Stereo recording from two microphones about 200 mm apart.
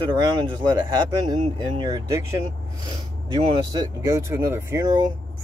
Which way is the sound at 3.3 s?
20° right (ahead or behind).